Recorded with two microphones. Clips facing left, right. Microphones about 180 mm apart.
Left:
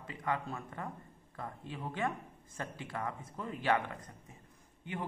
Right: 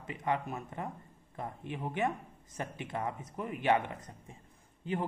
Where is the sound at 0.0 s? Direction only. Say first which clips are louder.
Right 3 dB; 20° right (ahead or behind).